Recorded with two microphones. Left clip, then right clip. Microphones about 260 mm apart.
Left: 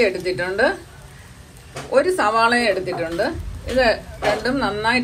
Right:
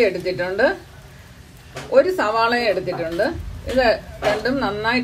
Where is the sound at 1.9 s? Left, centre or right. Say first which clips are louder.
Right 1 dB; left.